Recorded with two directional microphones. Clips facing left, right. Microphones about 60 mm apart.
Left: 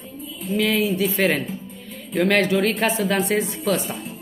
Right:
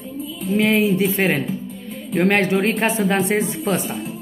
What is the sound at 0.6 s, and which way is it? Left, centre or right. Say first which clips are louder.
Speech: right 3 dB; right.